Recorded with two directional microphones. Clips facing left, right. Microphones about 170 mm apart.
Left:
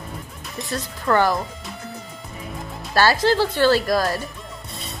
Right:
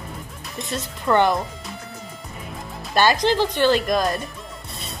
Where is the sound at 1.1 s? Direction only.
5° right (ahead or behind).